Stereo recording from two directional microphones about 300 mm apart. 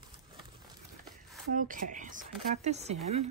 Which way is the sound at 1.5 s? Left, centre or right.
Right.